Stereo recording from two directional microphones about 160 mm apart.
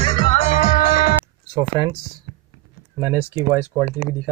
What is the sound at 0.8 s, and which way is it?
Music, 60° left (ahead or behind).